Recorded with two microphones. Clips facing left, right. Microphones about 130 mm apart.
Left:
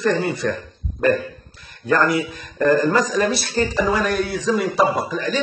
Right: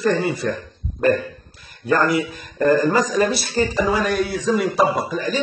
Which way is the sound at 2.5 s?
35° right (ahead or behind).